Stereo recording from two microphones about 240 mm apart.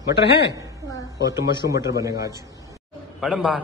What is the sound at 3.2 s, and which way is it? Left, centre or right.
Speech, centre.